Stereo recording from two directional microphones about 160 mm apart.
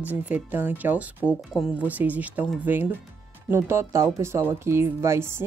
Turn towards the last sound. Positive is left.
turn(degrees=-15)  # may be behind; listen again after turning